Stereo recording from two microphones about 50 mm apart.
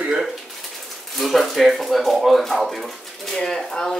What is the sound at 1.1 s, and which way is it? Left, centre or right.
Speech, centre.